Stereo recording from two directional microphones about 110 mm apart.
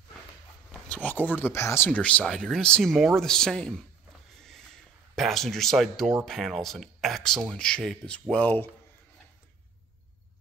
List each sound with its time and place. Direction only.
0.7 s speech: 10° left (ahead or behind)
1.9 s speech: 10° left (ahead or behind)
4.4 s a sound: 5° left (ahead or behind)
5.1 s speech: centre (ahead or behind)